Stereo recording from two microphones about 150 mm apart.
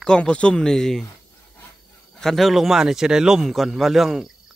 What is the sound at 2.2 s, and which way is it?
Speech, centre (ahead or behind).